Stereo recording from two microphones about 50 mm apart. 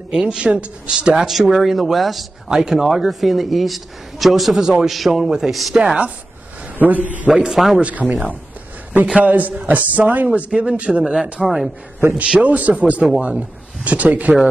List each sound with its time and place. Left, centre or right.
0.1 s speech: centre
1.2 s a man's voice: centre
2.5 s a man's voice: centre
4.6 s a man's voice: centre
4.8 s a man's voice: centre
6.8 s a man's voice: right
7.3 s a man's voice: centre
7.8 s speech: right
11.4 s a man's voice: centre
12.4 s a man's voice: right